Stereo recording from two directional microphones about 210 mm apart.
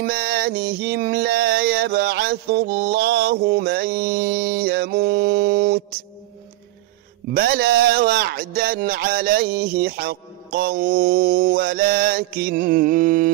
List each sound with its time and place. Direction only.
0.0 s music: 45° right (ahead or behind)
7.3 s music: 45° right (ahead or behind)